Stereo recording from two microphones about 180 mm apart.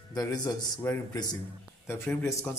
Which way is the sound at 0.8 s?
10° left (ahead or behind).